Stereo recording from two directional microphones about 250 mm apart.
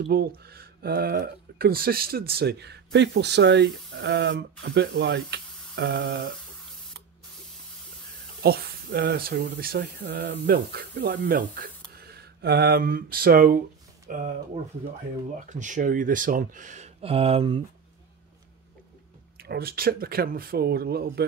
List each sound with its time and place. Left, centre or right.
0.0 s speech: right
8.4 s speech: right
19.3 s speech: right